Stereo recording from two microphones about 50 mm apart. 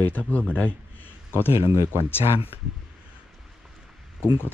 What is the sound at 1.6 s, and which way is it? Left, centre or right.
Speech, right.